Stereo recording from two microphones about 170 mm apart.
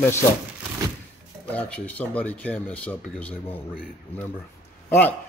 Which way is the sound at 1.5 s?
10° left (ahead or behind).